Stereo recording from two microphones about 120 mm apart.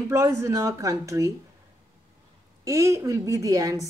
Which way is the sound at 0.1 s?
25° right (ahead or behind).